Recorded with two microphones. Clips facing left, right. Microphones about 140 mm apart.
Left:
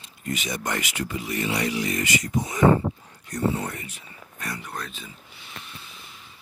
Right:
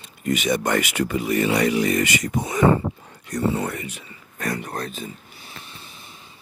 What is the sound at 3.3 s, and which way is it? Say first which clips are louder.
Speech: right 3 dB; 85° right.